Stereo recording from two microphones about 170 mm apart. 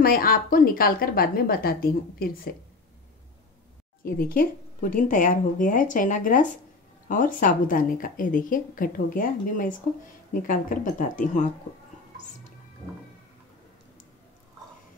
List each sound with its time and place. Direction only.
0.0 s a woman's voice: 60° left (ahead or behind)
4.0 s a woman's voice: 55° left (ahead or behind)